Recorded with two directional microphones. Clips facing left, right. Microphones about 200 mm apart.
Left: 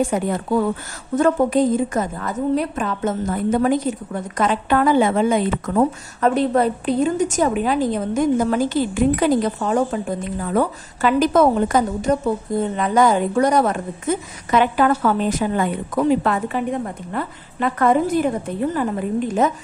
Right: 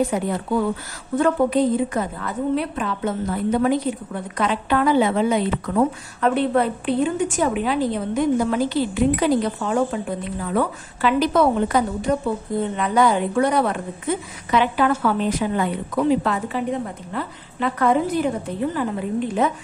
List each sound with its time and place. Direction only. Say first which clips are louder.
0.1 s a woman's voice: left 2 dB; 50° left (ahead or behind)